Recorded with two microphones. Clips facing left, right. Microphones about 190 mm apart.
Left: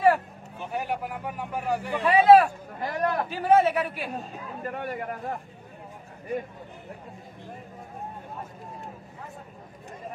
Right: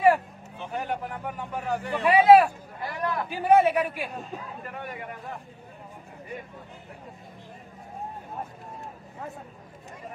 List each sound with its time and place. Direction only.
0.6 s speech: 10° left (ahead or behind)
2.1 s speech: 10° right (ahead or behind)
2.8 s speech: 45° left (ahead or behind)
3.3 s speech: 15° right (ahead or behind)
4.6 s speech: 45° left (ahead or behind)